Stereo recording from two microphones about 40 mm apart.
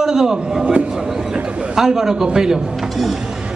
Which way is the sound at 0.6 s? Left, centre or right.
Right.